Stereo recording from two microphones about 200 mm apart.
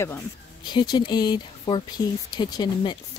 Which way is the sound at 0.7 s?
20° left (ahead or behind).